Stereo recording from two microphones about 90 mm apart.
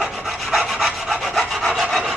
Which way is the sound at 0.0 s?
Centre (ahead or behind).